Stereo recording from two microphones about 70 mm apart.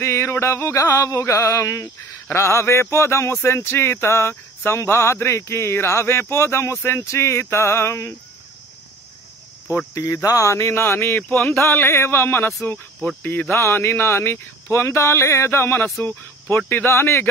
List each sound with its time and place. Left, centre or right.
0.0 s speech: left
9.9 s speech: left
13.2 s cricket: left
13.5 s speech: left